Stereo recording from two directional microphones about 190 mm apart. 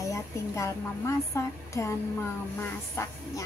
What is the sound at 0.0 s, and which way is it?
A woman's voice, 15° left (ahead or behind).